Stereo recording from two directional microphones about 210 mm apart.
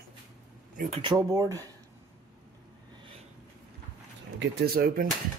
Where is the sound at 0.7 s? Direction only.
30° right (ahead or behind).